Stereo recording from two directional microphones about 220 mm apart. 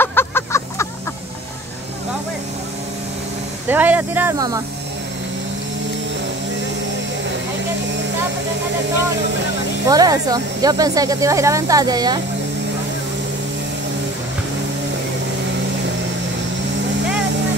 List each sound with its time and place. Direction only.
0.0 s a sound: 10° left (ahead or behind)
3.6 s speech: 10° right (ahead or behind)
9.8 s speech: 15° right (ahead or behind)